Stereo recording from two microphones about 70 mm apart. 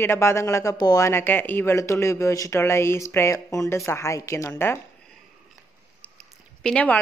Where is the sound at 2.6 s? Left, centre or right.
Left.